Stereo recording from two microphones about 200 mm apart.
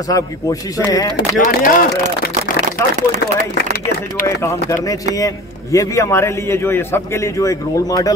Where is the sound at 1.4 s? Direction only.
45° left (ahead or behind).